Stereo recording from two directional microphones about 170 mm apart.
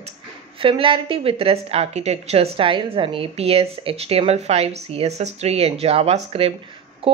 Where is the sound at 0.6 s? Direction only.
30° right (ahead or behind).